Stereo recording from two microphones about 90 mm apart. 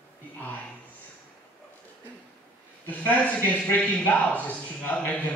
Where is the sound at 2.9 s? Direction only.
20° left (ahead or behind).